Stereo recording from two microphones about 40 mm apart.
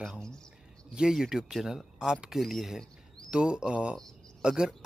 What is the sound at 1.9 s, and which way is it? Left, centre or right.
Speech, centre.